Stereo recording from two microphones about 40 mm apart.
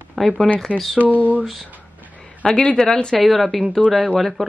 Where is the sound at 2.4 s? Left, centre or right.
Centre.